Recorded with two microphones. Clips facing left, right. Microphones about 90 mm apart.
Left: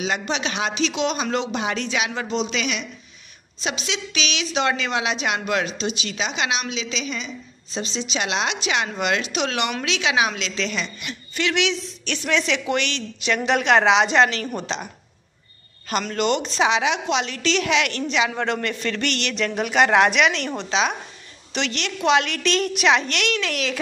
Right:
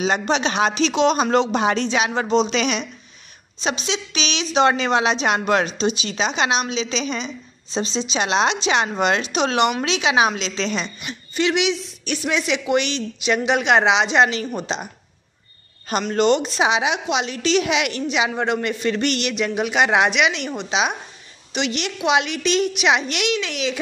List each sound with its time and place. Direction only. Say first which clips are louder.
0.0 s speech: right 5 dB; 40° right (ahead or behind)
3.6 s a woman's voice: right 3 dB; 25° right (ahead or behind)
5.9 s a woman's voice: right 4 dB; 25° right (ahead or behind)
13.5 s a woman's voice: left 1 dB; 5° right (ahead or behind)
15.9 s a woman's voice: right 4 dB; 25° right (ahead or behind)
16.4 s a woman's voice: right 1 dB; 15° right (ahead or behind)